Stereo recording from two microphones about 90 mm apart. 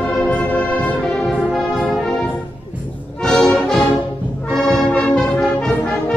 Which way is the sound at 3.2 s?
5° left (ahead or behind).